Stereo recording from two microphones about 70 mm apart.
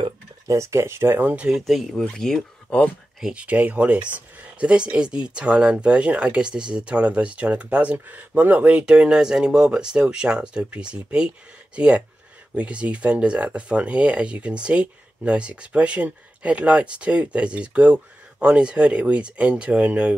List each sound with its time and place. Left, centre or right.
0.5 s speech: right
1.6 s speech: centre
2.7 s speech: centre
3.2 s speech: centre